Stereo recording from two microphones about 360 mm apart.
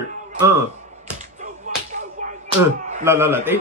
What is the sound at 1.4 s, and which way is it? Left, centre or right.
Whip, centre.